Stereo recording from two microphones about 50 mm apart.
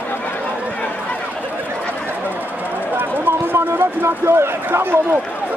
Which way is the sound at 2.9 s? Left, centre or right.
Right.